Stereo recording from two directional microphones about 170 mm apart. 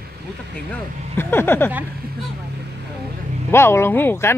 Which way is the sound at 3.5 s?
15° left (ahead or behind).